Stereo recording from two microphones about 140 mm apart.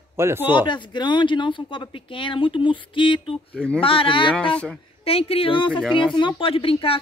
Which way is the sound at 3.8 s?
40° left (ahead or behind).